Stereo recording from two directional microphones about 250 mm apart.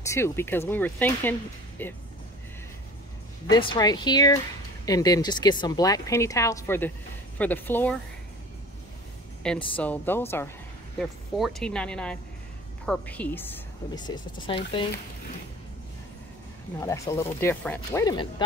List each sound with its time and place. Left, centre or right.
0.0 s speech: centre
3.5 s speech: centre
9.4 s speech: centre
16.8 s speech: centre